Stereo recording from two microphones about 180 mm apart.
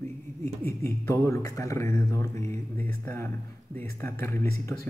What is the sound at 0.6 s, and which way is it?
A man's voice, 15° left (ahead or behind).